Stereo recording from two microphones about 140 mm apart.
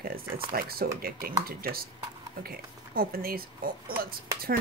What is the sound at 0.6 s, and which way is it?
Speech, 90° right.